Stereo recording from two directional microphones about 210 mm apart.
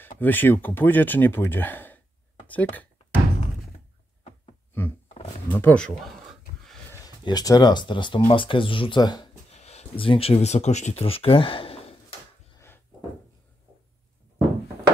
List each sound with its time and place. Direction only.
0.2 s speech: 10° left (ahead or behind)
5.0 s a sound: 30° left (ahead or behind)
5.5 s speech: 10° left (ahead or behind)
6.9 s speech: 20° left (ahead or behind)
9.5 s speech: 30° left (ahead or behind)
12.5 s a sound: 10° left (ahead or behind)